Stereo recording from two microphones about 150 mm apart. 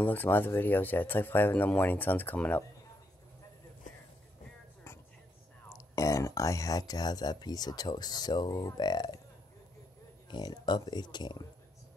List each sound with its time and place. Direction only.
0.0 s speech: 15° left (ahead or behind)
5.7 s speech: 20° left (ahead or behind)
10.3 s speech: 30° left (ahead or behind)